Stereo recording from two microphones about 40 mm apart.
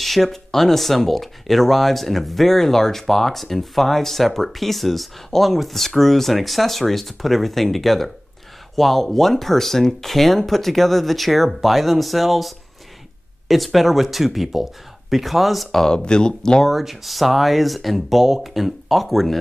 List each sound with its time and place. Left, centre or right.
0.0 s speech: centre
15.8 s speech: left
16.6 s speech: centre